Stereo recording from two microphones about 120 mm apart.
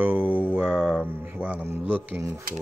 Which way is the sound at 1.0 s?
15° right (ahead or behind).